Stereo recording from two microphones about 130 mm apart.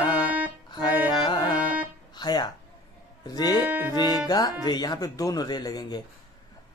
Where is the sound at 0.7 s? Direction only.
35° left (ahead or behind).